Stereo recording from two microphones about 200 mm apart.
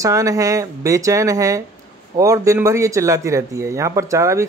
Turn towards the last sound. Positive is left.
turn(degrees=-15)  # may be behind; listen again after turning